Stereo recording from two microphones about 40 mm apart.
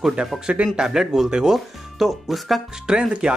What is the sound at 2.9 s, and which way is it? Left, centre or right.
Speech, right.